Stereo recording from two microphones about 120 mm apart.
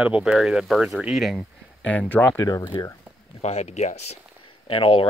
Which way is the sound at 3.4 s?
70° left (ahead or behind).